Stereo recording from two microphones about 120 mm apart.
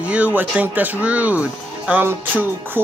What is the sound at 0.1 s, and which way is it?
Speech, 15° right (ahead or behind).